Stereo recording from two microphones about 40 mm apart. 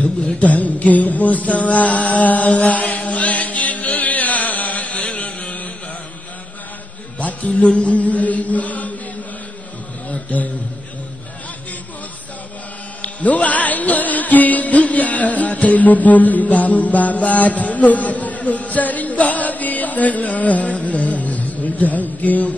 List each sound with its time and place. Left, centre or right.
0.4 s mantra: left
5.0 s a sound: left
7.2 s chant: left
10.3 s a man's voice: left
13.0 s music: left
20.7 s a sound: left